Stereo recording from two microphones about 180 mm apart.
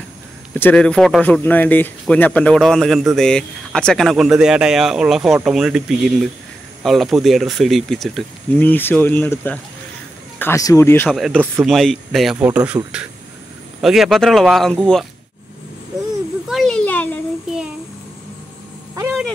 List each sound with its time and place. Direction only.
0.6 s speech: 5° left (ahead or behind)
11.1 s speech: centre (ahead or behind)
16.4 s a sound: centre (ahead or behind)